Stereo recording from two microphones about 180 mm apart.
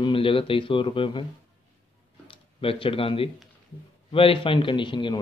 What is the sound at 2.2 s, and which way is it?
A man's voice, 30° left (ahead or behind).